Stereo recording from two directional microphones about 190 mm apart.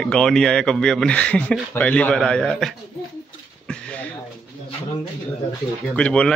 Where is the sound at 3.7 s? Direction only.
5° left (ahead or behind).